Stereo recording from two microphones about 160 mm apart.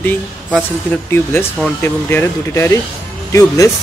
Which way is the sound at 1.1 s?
15° left (ahead or behind).